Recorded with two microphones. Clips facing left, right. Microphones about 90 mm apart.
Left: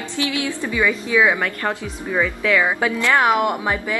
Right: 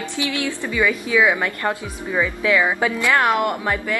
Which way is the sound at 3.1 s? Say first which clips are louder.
Left 2 dB; 15° left (ahead or behind).